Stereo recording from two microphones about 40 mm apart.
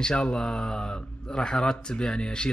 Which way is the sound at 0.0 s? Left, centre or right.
Left.